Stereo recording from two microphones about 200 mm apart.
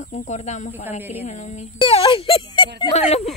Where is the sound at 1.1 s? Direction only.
35° left (ahead or behind).